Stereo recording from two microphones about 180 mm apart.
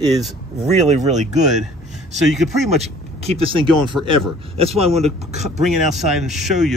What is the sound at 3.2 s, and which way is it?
Speech, 30° right (ahead or behind).